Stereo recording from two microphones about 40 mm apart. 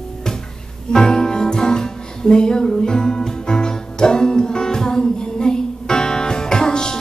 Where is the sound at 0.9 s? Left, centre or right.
Centre.